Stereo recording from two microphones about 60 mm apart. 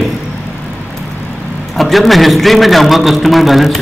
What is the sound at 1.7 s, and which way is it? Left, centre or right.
A man's voice, centre.